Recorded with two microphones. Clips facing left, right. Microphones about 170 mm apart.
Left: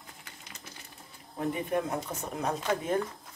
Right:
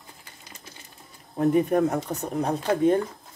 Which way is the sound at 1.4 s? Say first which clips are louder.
Right 10 dB; 45° right (ahead or behind).